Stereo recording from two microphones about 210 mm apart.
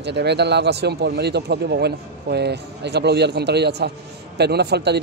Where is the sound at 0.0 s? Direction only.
55° right (ahead or behind).